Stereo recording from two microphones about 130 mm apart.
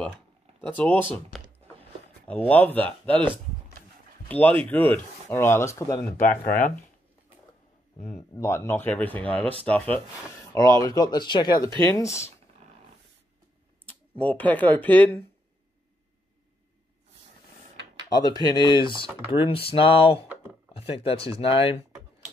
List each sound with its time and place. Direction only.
0.7 s speech: 10° left (ahead or behind)
2.2 s speech: 10° left (ahead or behind)
4.3 s speech: 15° left (ahead or behind)
8.1 s speech: 20° left (ahead or behind)
10.5 s speech: 25° left (ahead or behind)
14.2 s speech: 10° left (ahead or behind)
18.1 s speech: 30° left (ahead or behind); by 21.7 s 45° left (ahead or behind)